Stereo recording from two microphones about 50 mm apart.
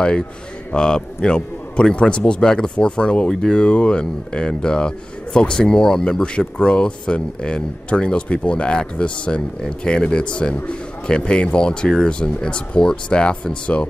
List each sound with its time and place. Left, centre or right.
0.7 s speech: centre